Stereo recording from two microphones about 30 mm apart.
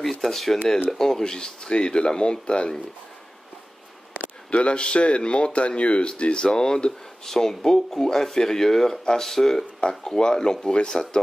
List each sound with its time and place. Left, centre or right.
0.0 s speech: centre
0.9 s speech: centre
1.7 s speech: left
4.5 s speech: left
6.4 s speech: left
9.8 s speech: left